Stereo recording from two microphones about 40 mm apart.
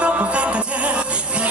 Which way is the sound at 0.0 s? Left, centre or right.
Right.